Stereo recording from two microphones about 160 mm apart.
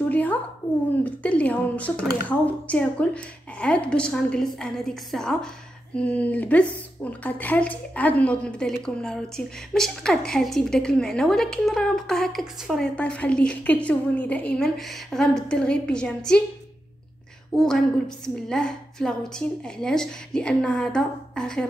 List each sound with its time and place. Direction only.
0.1 s a sound: 10° left (ahead or behind)
1.0 s a woman's voice: 10° left (ahead or behind)
17.6 s a woman's voice: 5° left (ahead or behind)